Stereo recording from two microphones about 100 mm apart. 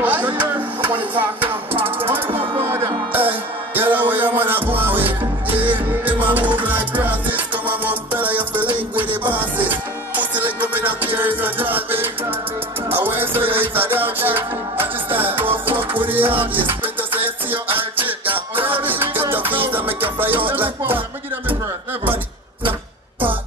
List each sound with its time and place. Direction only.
0.0 s music: 15° right (ahead or behind)